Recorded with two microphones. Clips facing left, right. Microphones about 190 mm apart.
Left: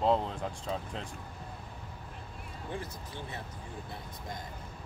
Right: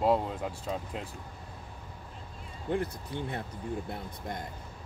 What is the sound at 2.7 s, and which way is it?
Speech, 60° right (ahead or behind).